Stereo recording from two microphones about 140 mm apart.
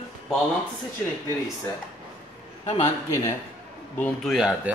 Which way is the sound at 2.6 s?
45° left (ahead or behind).